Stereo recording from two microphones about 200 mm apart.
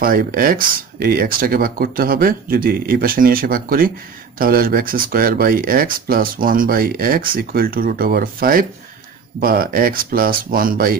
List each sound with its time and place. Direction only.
0.0 s speech: 45° right (ahead or behind)